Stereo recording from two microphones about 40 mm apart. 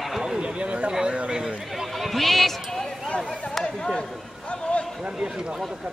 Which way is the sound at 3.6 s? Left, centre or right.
Centre.